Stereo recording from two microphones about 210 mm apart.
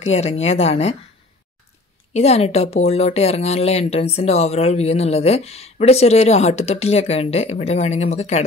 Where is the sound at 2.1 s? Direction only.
30° left (ahead or behind).